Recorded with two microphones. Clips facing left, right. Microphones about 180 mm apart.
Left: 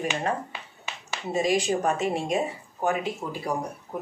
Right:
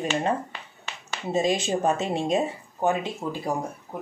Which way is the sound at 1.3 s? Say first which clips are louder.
Even; 25° right (ahead or behind).